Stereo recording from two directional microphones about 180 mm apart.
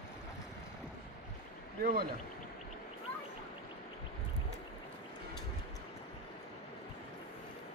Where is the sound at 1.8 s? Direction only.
55° right (ahead or behind).